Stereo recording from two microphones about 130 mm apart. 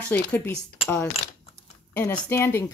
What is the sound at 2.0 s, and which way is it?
Speech, 25° left (ahead or behind).